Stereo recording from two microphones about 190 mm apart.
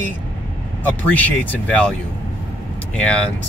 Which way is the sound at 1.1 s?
10° left (ahead or behind).